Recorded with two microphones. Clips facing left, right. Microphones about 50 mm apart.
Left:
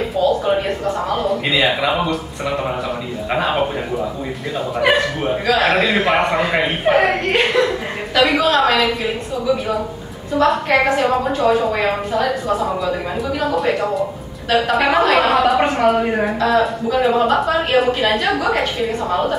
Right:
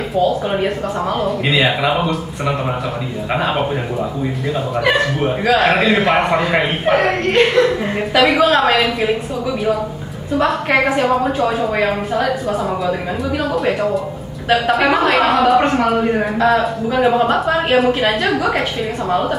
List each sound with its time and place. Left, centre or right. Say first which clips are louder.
0.5 s a woman's voice: left 1 dB; centre
5.2 s a man's voice: right 2 dB; centre
8.1 s a woman's voice: right 2 dB; centre
10.7 s a woman's voice: right 1 dB; centre
13.6 s a man's voice: right 1 dB; centre